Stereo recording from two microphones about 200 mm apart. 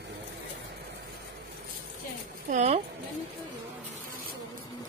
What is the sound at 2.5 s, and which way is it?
Speech, 35° right (ahead or behind).